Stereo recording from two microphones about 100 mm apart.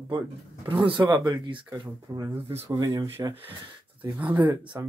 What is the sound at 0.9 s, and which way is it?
Speech, 50° right (ahead or behind).